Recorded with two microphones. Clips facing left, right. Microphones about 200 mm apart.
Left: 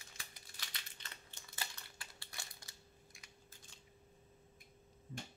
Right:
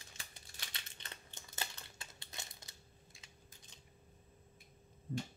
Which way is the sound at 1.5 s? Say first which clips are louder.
Right 3 dB; 20° right (ahead or behind).